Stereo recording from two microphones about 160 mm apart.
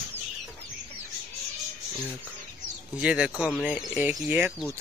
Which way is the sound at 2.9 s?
5° right (ahead or behind).